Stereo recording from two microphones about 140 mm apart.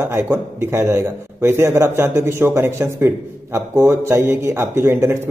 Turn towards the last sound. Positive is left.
turn(degrees=-20)  # may be behind; listen again after turning